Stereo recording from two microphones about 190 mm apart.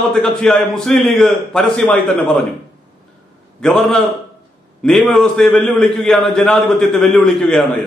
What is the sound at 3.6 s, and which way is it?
A man's voice, centre (ahead or behind).